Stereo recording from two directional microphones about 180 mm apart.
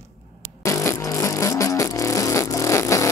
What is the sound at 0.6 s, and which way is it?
Music, 15° left (ahead or behind).